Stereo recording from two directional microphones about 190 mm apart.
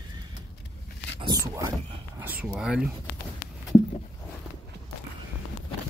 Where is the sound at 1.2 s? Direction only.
20° right (ahead or behind).